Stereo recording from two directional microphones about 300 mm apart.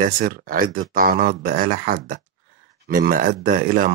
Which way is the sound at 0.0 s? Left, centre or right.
Right.